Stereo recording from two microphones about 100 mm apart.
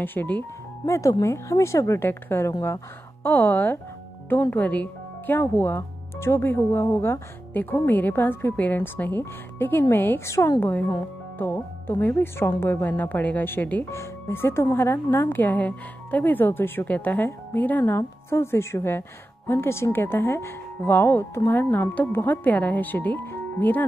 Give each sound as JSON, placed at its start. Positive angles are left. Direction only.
{"t": 0.0, "sound": "a woman's voice", "side_deg": 20}
{"t": 0.8, "sound": "a woman's voice", "side_deg": 30}
{"t": 10.6, "sound": "a woman's voice", "side_deg": 20}